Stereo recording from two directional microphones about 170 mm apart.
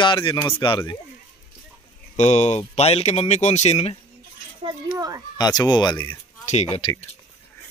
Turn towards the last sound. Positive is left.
turn(degrees=40)  # may be behind; listen again after turning